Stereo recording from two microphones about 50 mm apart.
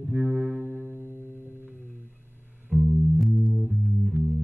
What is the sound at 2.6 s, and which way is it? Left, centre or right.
Music, right.